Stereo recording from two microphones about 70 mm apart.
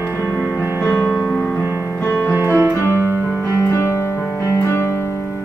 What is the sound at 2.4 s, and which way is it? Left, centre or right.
Music, right.